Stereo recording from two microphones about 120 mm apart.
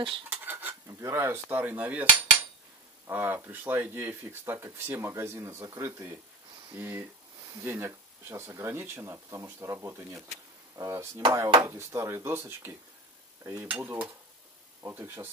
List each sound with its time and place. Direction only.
0.3 s a sound: 15° right (ahead or behind)
0.8 s cutlery: 25° right (ahead or behind)
3.1 s speech: 20° right (ahead or behind)
6.7 s cutlery: 20° right (ahead or behind)
7.6 s speech: 20° right (ahead or behind)
13.4 s cutlery: 25° right (ahead or behind)
13.7 s cutlery: 15° right (ahead or behind)
14.8 s speech: 20° right (ahead or behind)